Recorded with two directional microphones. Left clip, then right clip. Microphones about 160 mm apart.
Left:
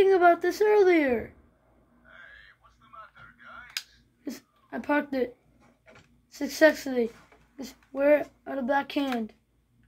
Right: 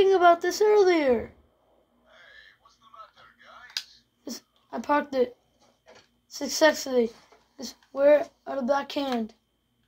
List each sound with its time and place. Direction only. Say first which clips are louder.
0.0 s speech: right 1 dB; 20° left (ahead or behind)
4.2 s speech: even; 15° left (ahead or behind)
6.3 s a woman's voice: even; 20° left (ahead or behind)